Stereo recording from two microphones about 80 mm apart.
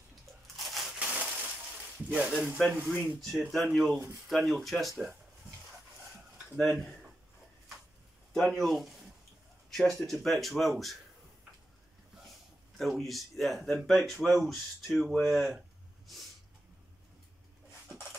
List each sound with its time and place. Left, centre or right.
0.6 s a sound: centre
0.9 s crushing: centre
2.0 s speech: centre
2.6 s speech: centre
3.2 s speech: centre
6.5 s speech: centre
8.3 s speech: centre
12.7 s speech: centre